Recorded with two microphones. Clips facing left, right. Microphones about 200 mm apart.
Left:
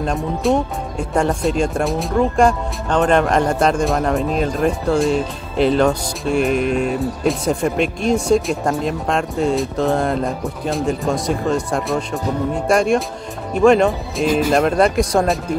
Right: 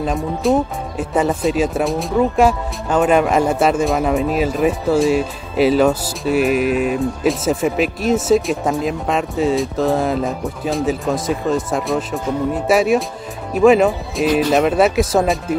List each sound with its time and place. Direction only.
0.0 s speech: centre (ahead or behind)